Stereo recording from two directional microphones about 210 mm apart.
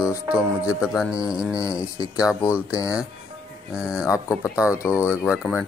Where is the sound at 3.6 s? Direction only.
5° right (ahead or behind).